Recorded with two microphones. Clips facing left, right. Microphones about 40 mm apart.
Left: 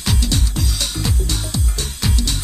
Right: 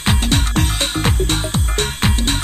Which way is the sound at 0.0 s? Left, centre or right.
Right.